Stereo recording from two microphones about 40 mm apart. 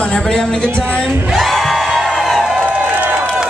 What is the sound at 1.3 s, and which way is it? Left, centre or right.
Music, centre.